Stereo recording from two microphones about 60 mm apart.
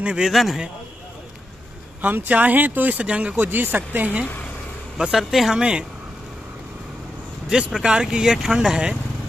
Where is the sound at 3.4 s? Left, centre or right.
Right.